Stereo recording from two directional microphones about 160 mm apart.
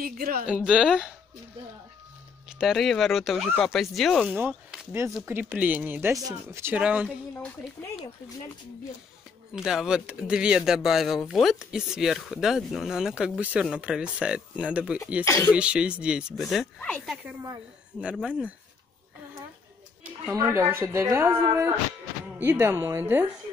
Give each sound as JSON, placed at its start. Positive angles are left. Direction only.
{"t": 0.0, "sound": "speech", "side_deg": -65}
{"t": 0.7, "sound": "speech", "side_deg": -5}
{"t": 2.6, "sound": "speech", "side_deg": 0}
{"t": 4.3, "sound": "speech", "side_deg": -10}
{"t": 7.1, "sound": "speech", "side_deg": 10}
{"t": 9.5, "sound": "speech", "side_deg": -5}
{"t": 15.2, "sound": "speech", "side_deg": 20}
{"t": 15.5, "sound": "speech", "side_deg": -5}
{"t": 17.2, "sound": "speech", "side_deg": -10}
{"t": 20.3, "sound": "speech", "side_deg": -15}